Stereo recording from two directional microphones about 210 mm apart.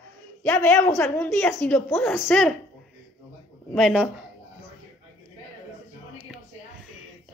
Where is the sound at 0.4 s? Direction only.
10° left (ahead or behind).